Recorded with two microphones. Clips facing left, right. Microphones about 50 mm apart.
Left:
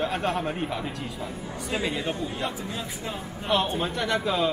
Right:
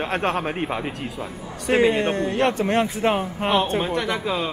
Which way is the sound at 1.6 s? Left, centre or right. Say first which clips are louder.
Right 10 dB; right.